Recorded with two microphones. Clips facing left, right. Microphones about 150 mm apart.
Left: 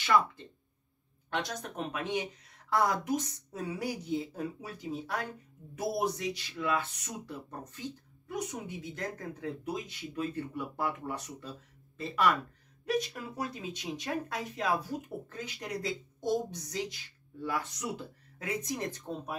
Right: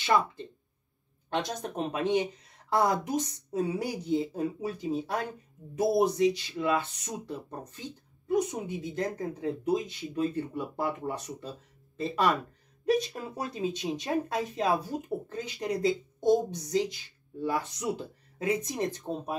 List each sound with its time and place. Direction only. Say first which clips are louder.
1.3 s speech: right 4 dB; 25° right (ahead or behind)